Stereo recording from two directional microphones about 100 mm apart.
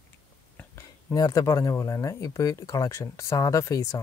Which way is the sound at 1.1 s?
35° left (ahead or behind).